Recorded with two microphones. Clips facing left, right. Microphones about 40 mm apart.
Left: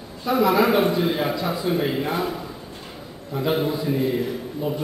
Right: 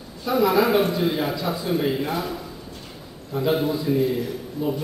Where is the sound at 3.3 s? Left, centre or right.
Centre.